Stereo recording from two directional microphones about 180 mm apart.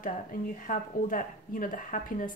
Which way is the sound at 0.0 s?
50° left (ahead or behind).